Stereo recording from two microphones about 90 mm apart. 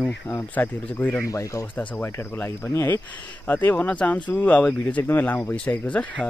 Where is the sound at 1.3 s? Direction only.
35° left (ahead or behind).